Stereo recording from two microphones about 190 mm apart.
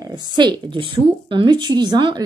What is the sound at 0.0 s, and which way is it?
Speech, 20° right (ahead or behind).